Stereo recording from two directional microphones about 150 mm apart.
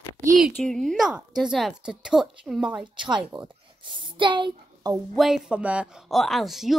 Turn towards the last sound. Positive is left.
turn(degrees=0)  # may be behind; listen again after turning